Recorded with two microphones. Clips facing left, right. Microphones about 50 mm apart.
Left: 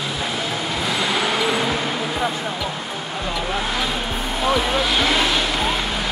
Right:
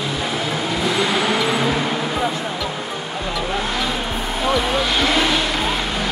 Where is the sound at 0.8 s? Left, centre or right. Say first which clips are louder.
Right 2 dB; centre.